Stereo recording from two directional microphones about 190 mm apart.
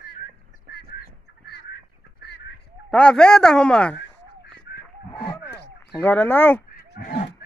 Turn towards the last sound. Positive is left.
turn(degrees=60)  # may be behind; listen again after turning